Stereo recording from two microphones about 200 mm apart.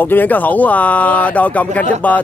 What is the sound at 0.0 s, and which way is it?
Speech, 10° left (ahead or behind).